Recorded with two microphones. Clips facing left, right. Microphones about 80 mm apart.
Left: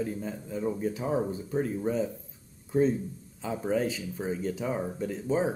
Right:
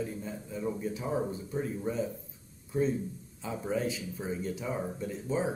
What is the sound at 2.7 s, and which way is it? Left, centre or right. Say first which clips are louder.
Speech: left 4 dB; left.